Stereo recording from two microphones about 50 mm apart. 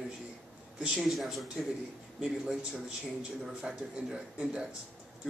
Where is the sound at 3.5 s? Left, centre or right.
Centre.